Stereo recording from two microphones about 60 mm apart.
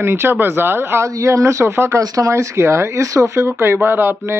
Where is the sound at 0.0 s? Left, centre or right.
Right.